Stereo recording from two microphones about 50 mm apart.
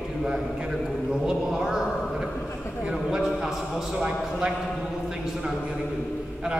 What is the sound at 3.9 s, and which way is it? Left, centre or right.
Speech, centre.